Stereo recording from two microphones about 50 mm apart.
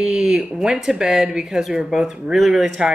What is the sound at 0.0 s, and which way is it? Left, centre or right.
Speech, centre.